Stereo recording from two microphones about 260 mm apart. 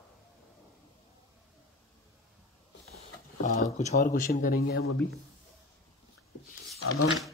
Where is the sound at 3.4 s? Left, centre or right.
Left.